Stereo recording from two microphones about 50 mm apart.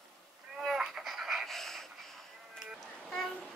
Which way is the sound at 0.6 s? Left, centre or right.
Centre.